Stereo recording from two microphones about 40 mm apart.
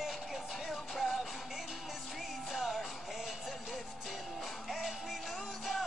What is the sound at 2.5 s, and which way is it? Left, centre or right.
Music, centre.